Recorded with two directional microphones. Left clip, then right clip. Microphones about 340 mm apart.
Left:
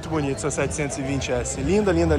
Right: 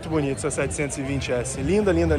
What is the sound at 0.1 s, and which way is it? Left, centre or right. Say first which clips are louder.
Speech: even; centre.